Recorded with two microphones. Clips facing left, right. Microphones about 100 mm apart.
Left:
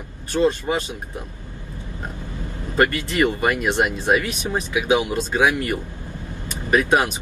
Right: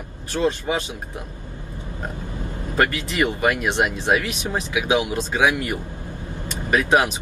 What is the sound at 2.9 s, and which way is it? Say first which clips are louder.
Speech: left 2 dB; 15° right (ahead or behind).